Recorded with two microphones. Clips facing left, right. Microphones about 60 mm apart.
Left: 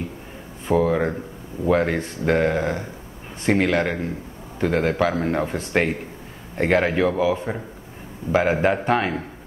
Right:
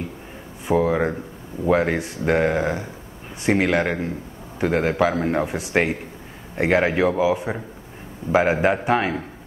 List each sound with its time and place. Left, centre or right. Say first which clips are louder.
0.7 s speech: even; centre